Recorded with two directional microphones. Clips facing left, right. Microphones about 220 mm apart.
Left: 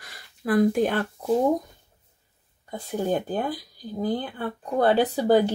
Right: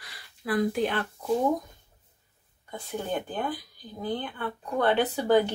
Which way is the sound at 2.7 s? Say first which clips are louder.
Left 6 dB; 40° left (ahead or behind).